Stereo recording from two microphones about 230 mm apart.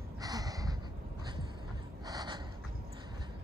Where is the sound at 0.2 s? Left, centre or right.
Centre.